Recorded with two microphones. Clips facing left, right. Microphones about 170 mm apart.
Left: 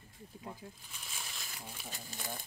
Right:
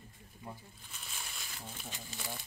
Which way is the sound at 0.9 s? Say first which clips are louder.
Even; centre (ahead or behind).